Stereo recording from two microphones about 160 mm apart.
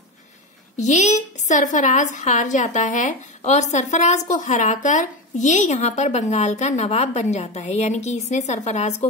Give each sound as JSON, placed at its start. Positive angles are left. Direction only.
{"t": 0.7, "sound": "a woman's voice", "side_deg": 50}